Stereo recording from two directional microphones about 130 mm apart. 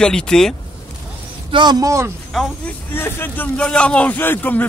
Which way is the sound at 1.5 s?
35° right (ahead or behind).